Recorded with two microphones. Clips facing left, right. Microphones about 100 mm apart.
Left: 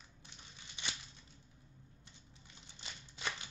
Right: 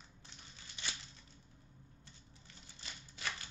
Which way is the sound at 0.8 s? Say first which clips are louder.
Left 1 dB; 20° left (ahead or behind).